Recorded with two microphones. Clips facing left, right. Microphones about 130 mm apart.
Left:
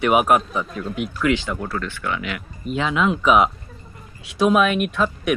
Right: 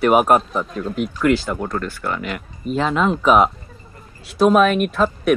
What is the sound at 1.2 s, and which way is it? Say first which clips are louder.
Speech: right 3 dB; 40° right (ahead or behind).